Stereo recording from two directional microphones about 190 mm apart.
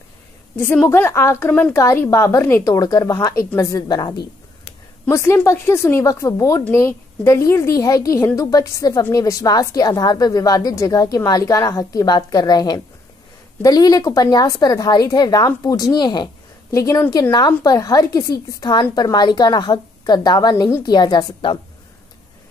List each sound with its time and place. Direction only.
0.6 s a woman's voice: 10° left (ahead or behind)